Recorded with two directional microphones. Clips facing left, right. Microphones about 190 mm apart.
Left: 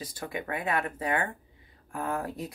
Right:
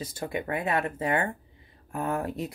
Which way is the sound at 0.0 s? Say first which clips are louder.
Right 4 dB; 25° right (ahead or behind).